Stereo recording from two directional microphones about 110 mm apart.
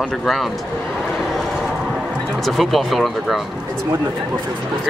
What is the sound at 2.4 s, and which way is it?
Speech, centre (ahead or behind).